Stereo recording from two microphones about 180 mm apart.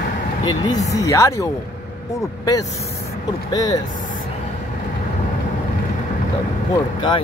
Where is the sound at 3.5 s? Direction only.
20° left (ahead or behind).